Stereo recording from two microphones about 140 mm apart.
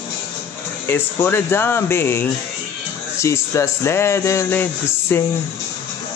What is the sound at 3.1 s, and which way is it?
Speech, 20° left (ahead or behind).